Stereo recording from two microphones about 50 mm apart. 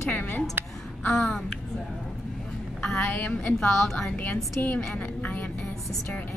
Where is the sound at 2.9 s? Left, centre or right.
Left.